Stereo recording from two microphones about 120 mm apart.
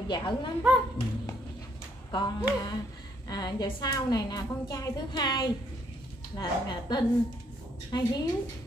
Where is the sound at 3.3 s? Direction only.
35° left (ahead or behind).